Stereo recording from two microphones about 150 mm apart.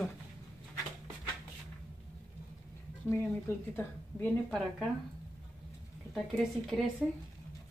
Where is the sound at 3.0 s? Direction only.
15° left (ahead or behind).